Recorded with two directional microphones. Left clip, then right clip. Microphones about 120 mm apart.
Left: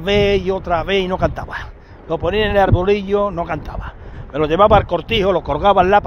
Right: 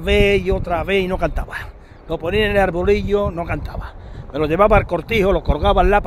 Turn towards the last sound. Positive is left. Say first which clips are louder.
# left 3 dB
turn(degrees=-25)  # may be behind; listen again after turning